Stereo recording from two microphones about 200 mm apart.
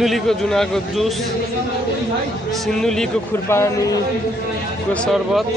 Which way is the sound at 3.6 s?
15° left (ahead or behind).